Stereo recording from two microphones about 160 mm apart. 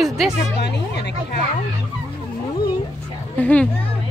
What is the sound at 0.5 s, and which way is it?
Speech, 90° left.